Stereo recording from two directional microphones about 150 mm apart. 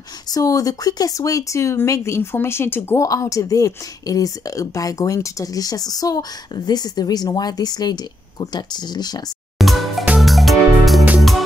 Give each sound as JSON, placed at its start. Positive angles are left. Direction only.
{"t": 0.3, "sound": "speech", "side_deg": 25}
{"t": 9.6, "sound": "music", "side_deg": 0}